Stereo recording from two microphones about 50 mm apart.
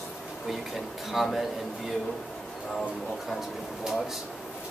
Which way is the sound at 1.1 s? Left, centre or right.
Centre.